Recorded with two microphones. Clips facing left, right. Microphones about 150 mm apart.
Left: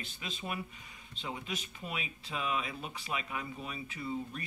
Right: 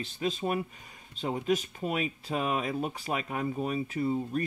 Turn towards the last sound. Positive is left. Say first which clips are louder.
# right 9 dB
turn(degrees=-45)  # may be behind; listen again after turning